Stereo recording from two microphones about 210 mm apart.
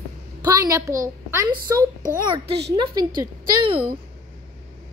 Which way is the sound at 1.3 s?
15° right (ahead or behind).